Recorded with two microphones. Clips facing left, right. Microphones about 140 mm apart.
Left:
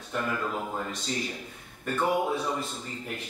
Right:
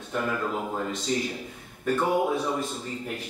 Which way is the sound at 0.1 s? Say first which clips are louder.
Right 2 dB; 5° right (ahead or behind).